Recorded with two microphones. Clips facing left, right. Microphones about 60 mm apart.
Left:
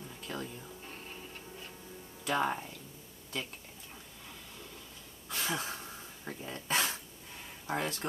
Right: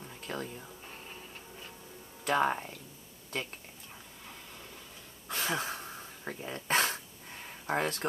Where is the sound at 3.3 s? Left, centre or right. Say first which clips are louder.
Right 2 dB; right.